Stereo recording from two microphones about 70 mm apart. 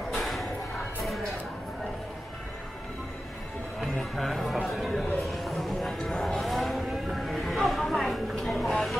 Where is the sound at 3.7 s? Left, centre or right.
Centre.